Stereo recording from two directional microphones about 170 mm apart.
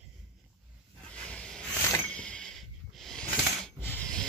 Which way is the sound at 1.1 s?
5° left (ahead or behind).